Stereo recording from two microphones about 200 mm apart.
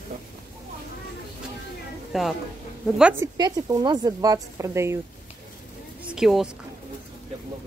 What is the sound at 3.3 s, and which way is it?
Speech, 20° right (ahead or behind).